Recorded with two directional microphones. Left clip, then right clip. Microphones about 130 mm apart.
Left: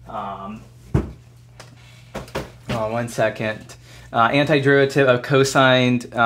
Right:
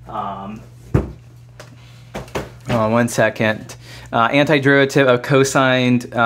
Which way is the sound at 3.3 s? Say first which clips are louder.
Right 6 dB; 20° right (ahead or behind).